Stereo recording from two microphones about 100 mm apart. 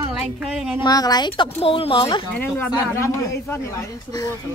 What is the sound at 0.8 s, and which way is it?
Speech, 40° left (ahead or behind).